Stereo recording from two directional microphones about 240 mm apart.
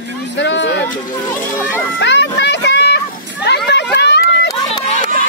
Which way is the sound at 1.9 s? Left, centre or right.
Left.